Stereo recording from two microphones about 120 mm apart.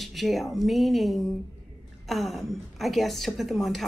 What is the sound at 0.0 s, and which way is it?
A woman's voice, centre (ahead or behind).